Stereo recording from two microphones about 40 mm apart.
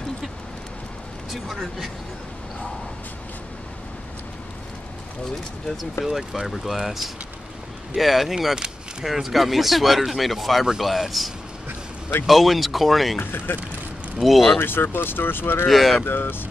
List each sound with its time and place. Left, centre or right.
1.3 s speech: centre
6.0 s speech: centre
13.2 s speech: left
14.2 s speech: centre
14.6 s speech: left
15.7 s speech: centre
16.1 s speech: left